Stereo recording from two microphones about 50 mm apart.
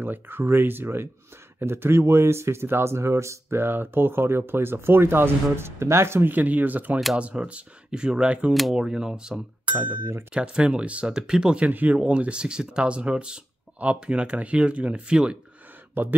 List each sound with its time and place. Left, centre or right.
0.0 s speech: right
6.3 s speech: right
7.2 s speech: right
10.3 s speech: centre
11.6 s speech: right
15.9 s speech: right